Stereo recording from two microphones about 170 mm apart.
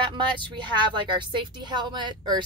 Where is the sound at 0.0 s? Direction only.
25° right (ahead or behind).